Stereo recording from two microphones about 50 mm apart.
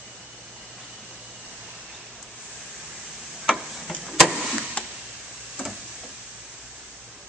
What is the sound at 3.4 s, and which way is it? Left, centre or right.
Tick-tock, centre.